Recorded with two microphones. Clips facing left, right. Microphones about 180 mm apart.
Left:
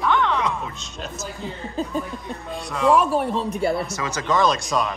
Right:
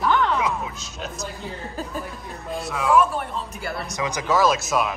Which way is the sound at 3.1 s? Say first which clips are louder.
Left 7 dB; 35° left (ahead or behind).